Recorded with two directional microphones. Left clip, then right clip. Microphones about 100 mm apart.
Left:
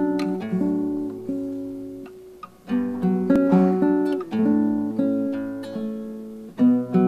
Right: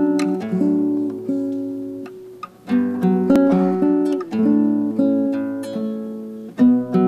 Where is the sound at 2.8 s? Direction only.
30° right (ahead or behind).